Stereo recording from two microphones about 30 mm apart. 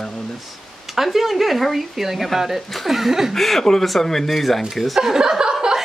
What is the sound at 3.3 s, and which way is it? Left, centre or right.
Speech, centre.